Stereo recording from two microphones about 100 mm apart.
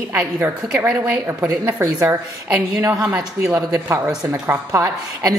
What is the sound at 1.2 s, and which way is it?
Speech, 20° right (ahead or behind).